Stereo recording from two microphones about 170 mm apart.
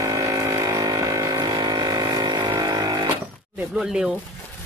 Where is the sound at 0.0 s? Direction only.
20° right (ahead or behind).